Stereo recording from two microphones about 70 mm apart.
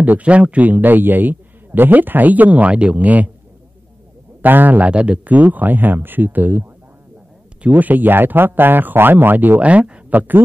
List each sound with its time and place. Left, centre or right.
0.0 s a man's voice: right
4.4 s a man's voice: right
7.6 s a man's voice: right